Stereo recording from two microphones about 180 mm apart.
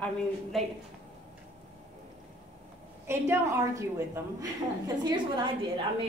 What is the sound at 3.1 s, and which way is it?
A woman's voice, 15° right (ahead or behind).